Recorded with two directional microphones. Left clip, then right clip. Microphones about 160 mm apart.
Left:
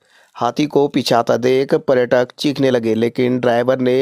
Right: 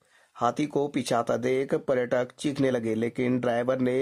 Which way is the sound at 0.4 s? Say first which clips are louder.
Left 10 dB; 30° left (ahead or behind).